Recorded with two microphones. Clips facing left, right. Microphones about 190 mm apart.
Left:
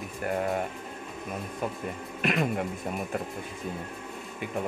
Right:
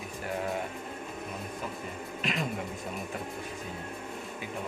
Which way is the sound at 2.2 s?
60° left (ahead or behind).